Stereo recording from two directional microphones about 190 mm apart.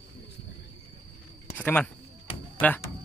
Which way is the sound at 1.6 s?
10° left (ahead or behind).